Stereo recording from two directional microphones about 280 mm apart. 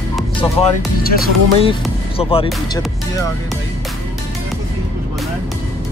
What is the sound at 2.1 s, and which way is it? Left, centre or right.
Speech, centre.